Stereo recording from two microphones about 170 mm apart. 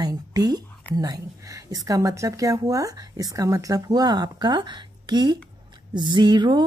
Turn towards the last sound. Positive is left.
turn(degrees=-25)  # may be behind; listen again after turning